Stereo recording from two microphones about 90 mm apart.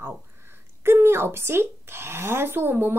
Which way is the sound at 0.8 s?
25° right (ahead or behind).